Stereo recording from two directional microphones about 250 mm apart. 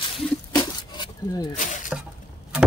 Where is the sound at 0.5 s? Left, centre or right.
Centre.